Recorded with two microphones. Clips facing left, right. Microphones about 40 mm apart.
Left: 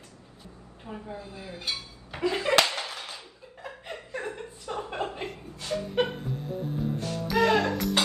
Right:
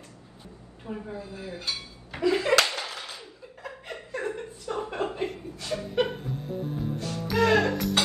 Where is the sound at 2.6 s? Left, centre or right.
Left.